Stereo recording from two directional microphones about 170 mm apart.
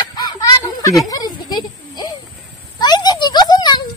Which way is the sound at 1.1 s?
25° left (ahead or behind).